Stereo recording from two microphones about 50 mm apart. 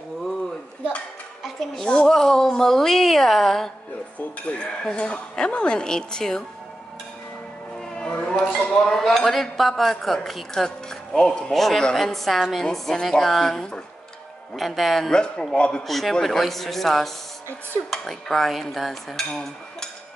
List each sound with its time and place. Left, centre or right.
1.9 s speech: centre
4.4 s speech: left
7.9 s a sound: left
8.3 s a man's voice: centre
11.5 s a man's voice: centre
15.1 s speech: centre
15.9 s a man's voice: centre